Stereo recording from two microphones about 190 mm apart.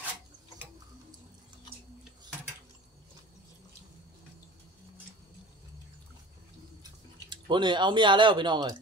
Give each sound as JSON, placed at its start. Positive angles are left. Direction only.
{"t": 6.8, "sound": "speech", "side_deg": -25}